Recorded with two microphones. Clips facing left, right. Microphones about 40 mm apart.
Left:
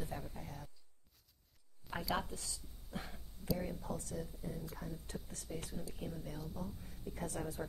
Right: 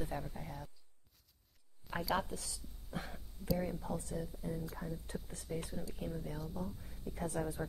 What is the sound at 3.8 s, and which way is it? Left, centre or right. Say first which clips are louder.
Speech: right 2 dB; right.